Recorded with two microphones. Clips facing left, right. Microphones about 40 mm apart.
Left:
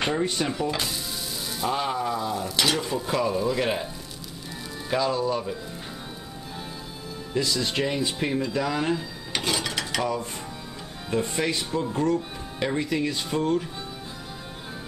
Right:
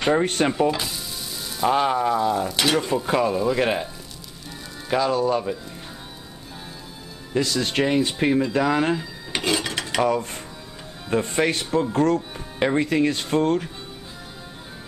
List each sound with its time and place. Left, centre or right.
0.2 s speech: right
0.7 s speech: centre
1.7 s speech: right
4.8 s speech: centre
5.1 s speech: right
7.3 s speech: right
8.5 s drawer open or close: right
9.7 s dishes: right
11.1 s speech: right
11.9 s speech: right
12.5 s speech: right